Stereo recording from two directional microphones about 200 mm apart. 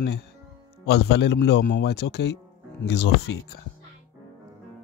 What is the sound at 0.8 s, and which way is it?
A man's voice, 55° left (ahead or behind).